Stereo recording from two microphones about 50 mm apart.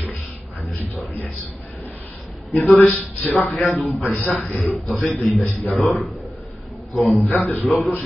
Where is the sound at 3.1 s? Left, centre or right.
Left.